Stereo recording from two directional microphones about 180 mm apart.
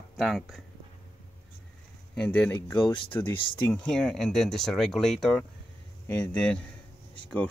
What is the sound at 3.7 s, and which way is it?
Speech, 5° left (ahead or behind).